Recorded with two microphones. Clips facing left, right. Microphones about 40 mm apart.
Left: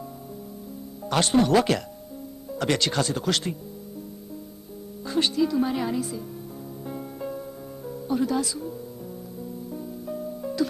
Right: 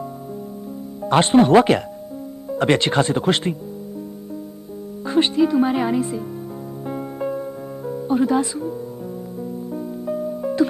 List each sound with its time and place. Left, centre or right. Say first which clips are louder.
1.0 s speech: right 7 dB; right
5.0 s speech: right 6 dB; right
6.9 s music: right 8 dB; right